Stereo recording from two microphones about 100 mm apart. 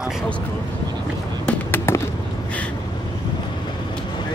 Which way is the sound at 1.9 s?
25° left (ahead or behind).